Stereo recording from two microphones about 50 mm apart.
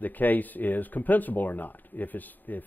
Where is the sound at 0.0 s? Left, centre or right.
Left.